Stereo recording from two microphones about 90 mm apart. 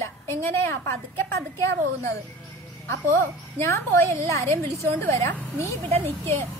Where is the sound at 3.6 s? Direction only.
30° left (ahead or behind).